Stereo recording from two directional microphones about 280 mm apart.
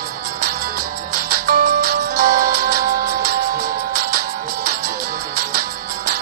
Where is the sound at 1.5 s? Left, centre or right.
Right.